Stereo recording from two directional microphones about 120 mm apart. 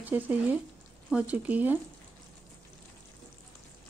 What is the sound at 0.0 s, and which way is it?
Speech, 15° right (ahead or behind).